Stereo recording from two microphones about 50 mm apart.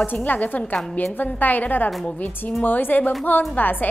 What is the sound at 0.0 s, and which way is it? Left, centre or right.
A woman's voice, left.